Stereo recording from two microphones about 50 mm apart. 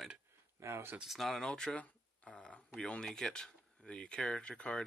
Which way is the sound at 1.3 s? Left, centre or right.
Centre.